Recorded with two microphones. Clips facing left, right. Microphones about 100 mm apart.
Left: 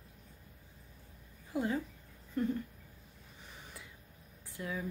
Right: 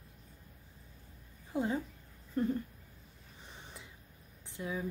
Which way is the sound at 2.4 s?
35° right (ahead or behind).